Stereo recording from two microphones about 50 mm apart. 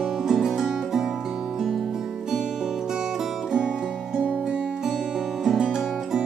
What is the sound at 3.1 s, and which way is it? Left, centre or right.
Music, centre.